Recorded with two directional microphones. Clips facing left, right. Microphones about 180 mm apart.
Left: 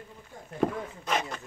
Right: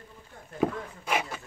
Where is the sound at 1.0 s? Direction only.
10° right (ahead or behind).